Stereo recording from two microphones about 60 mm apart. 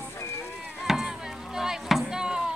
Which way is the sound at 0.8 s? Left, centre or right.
Centre.